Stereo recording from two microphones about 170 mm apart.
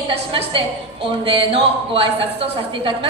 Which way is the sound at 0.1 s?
35° right (ahead or behind).